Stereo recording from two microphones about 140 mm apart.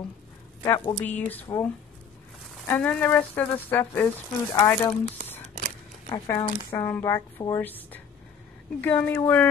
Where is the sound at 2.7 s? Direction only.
10° left (ahead or behind).